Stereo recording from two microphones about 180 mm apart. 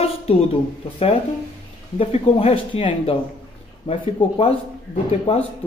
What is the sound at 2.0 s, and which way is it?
Speech, 35° left (ahead or behind).